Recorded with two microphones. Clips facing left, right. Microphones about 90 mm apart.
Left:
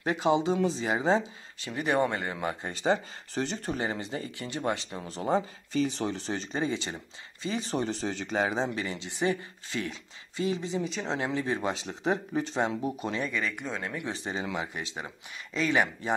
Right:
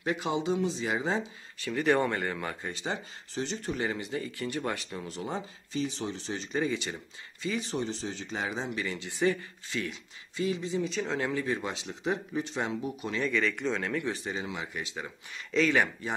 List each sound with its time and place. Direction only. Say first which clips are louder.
0.0 s speech: left 4 dB; 30° left (ahead or behind)
1.7 s speech: right 1 dB; 15° left (ahead or behind)
2.7 s speech: left 8 dB; 45° left (ahead or behind)
3.8 s speech: even; 30° left (ahead or behind)
5.7 s speech: left 3 dB; 55° left (ahead or behind); by 6.6 s 40° left (ahead or behind)
6.6 s speech: even; 25° left (ahead or behind)
7.7 s speech: left 3 dB; 55° left (ahead or behind)
8.4 s speech: left 5 dB; 35° left (ahead or behind); by 9.4 s 20° left (ahead or behind)
9.7 s speech: left 1 dB; 30° left (ahead or behind)
13.2 s speech: right 3 dB; 10° left (ahead or behind)
14.0 s speech: even; 25° left (ahead or behind)
14.7 s speech: even; 25° left (ahead or behind)